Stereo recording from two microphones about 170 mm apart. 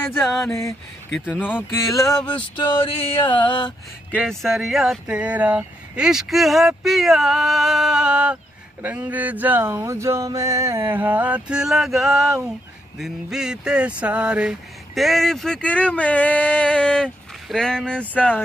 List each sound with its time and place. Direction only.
0.2 s speech: centre (ahead or behind)
0.5 s a sound: 15° left (ahead or behind)
1.2 s speech: 5° right (ahead or behind)
2.0 s male singing: 20° left (ahead or behind)
4.3 s speech: centre (ahead or behind)
8.8 s a sound: 10° right (ahead or behind)
13.0 s speech: 5° right (ahead or behind)